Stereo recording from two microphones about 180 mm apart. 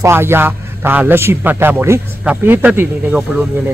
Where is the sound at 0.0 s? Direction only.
15° right (ahead or behind).